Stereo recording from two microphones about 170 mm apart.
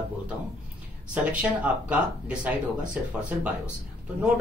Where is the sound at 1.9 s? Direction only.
5° right (ahead or behind).